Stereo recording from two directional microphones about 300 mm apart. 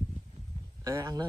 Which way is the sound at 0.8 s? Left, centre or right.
Centre.